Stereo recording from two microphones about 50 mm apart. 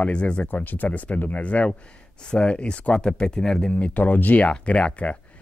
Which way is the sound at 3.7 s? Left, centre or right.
Left.